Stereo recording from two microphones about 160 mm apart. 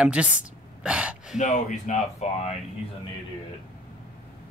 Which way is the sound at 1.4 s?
45° left (ahead or behind).